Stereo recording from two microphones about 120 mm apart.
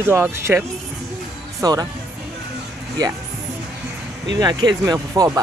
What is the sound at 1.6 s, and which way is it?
Speech, 30° right (ahead or behind).